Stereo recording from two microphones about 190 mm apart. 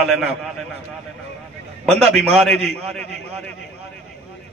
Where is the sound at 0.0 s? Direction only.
Centre (ahead or behind).